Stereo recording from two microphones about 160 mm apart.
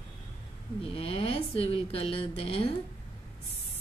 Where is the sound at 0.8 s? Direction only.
35° left (ahead or behind).